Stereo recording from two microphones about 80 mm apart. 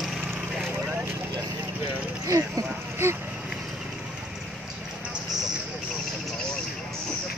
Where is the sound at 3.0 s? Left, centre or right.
Right.